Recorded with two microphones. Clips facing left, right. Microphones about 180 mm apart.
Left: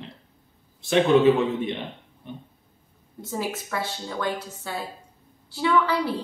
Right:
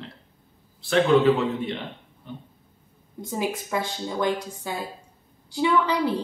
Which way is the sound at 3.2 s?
15° right (ahead or behind).